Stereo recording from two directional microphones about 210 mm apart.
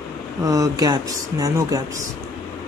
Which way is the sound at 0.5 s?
15° right (ahead or behind).